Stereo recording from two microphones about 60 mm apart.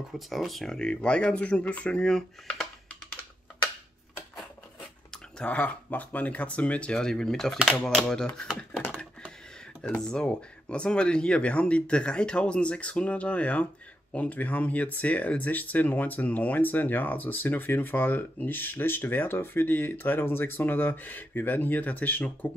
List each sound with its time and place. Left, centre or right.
0.1 s speech: centre
0.7 s speech: centre
5.5 s speech: left
10.0 s speech: centre